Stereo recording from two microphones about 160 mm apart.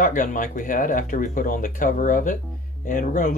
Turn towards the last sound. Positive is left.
turn(degrees=55)  # may be behind; listen again after turning